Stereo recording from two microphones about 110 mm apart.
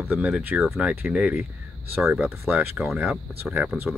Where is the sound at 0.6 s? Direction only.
5° right (ahead or behind).